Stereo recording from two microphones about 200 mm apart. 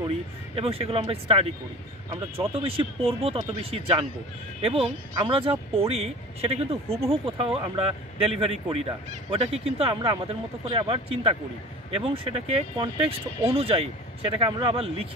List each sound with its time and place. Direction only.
0.6 s speech: 30° right (ahead or behind)